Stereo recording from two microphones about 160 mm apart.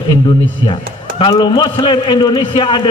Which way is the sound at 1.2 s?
30° left (ahead or behind).